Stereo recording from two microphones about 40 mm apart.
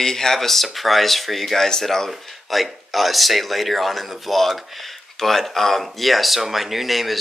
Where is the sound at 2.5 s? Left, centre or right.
Centre.